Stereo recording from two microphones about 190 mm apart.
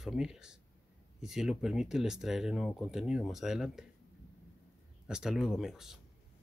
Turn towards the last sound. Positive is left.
turn(degrees=0)  # may be behind; listen again after turning